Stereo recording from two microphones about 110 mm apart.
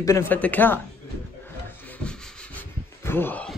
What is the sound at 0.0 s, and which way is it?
Speech, 25° left (ahead or behind).